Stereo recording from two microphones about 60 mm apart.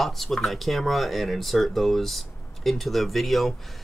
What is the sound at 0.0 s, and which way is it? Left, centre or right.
Speech, centre.